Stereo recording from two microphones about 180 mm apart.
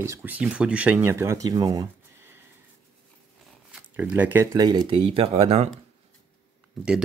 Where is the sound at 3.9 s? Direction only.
10° right (ahead or behind); by 5.7 s 35° right (ahead or behind).